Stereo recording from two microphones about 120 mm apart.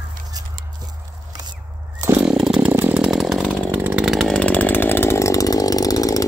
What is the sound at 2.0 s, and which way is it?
Chainsaw, 20° right (ahead or behind).